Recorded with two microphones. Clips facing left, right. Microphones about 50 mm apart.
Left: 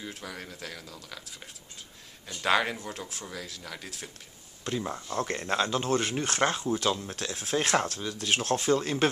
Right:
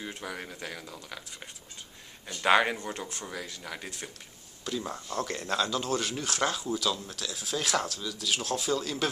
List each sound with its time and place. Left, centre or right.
0.1 s speech: centre
2.8 s speech: centre
4.8 s speech: centre
5.1 s speech: left